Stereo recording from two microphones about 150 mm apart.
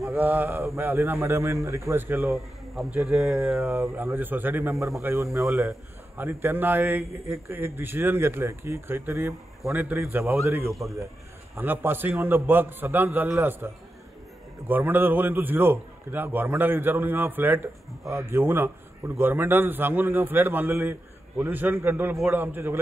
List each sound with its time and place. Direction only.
0.1 s a man's voice: 15° right (ahead or behind)
2.3 s speech: centre (ahead or behind)
3.7 s a man's voice: 15° right (ahead or behind)
14.7 s a man's voice: 15° right (ahead or behind)